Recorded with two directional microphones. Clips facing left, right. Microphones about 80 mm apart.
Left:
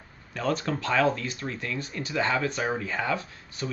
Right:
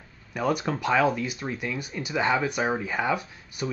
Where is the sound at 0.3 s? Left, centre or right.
Centre.